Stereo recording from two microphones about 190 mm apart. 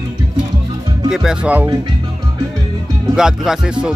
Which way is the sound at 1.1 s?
5° right (ahead or behind).